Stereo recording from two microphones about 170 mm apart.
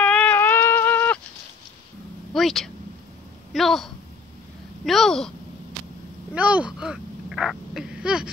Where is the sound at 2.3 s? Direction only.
Centre (ahead or behind).